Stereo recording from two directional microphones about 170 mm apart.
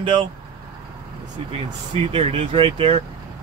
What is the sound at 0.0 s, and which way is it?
Speech, 30° right (ahead or behind).